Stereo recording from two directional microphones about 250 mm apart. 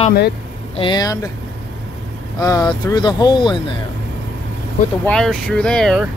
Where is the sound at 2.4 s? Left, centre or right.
Centre.